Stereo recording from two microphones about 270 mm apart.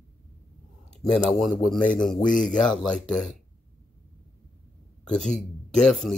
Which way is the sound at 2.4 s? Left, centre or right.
Centre.